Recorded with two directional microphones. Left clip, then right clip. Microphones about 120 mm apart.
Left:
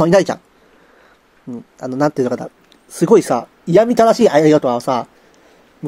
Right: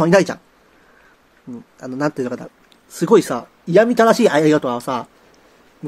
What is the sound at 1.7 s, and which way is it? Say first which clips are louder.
Speech: left 5 dB; 30° left (ahead or behind).